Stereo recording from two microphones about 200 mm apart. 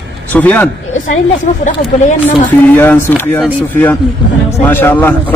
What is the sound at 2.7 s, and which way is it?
A man's voice, 10° left (ahead or behind).